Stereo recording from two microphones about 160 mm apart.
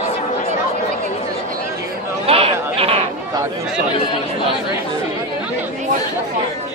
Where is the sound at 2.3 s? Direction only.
40° right (ahead or behind).